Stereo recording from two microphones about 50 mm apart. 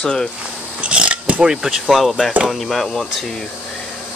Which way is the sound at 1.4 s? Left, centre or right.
Centre.